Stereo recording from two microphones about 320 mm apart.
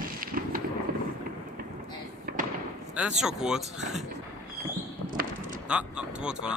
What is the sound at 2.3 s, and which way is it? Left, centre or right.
Fireworks, right.